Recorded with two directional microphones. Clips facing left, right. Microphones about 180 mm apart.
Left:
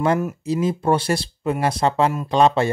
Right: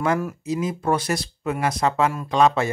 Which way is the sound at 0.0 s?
25° left (ahead or behind).